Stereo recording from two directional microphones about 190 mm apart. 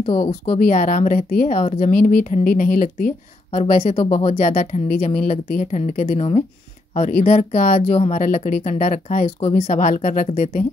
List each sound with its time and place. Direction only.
0.0 s speech: 30° left (ahead or behind)
0.5 s a woman's voice: 40° left (ahead or behind)
3.7 s speech: 35° left (ahead or behind)